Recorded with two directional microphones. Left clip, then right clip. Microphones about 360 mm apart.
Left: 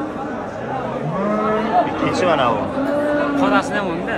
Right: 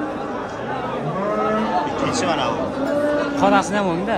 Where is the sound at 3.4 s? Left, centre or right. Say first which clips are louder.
Right 1 dB; right.